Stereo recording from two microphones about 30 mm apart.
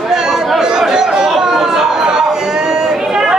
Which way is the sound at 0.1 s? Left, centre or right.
Centre.